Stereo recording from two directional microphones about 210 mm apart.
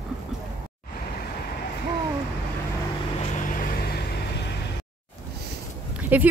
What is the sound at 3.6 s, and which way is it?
Vehicle, 50° left (ahead or behind).